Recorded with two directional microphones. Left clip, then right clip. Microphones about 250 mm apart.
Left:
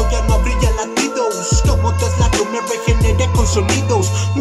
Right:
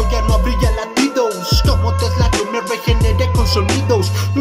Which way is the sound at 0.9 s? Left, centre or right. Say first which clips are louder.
Right 3 dB; centre.